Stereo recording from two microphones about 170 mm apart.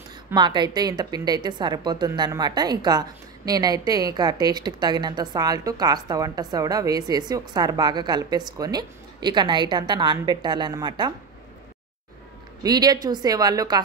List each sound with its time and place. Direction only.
0.3 s a woman's voice: 25° right (ahead or behind)
12.6 s a woman's voice: 25° right (ahead or behind)